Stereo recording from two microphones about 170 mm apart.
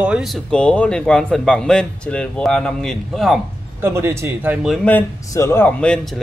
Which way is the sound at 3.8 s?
15° right (ahead or behind).